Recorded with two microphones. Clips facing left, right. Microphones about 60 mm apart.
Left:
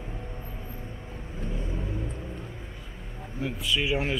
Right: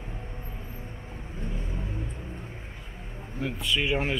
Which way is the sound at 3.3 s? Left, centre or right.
Centre.